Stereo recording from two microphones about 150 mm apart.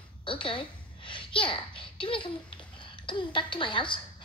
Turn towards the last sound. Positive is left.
turn(degrees=30)  # may be behind; listen again after turning